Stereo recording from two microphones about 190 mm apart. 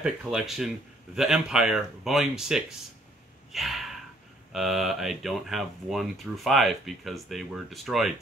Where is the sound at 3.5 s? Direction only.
Centre (ahead or behind).